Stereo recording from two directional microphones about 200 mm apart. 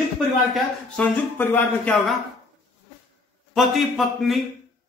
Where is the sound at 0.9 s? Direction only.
10° left (ahead or behind).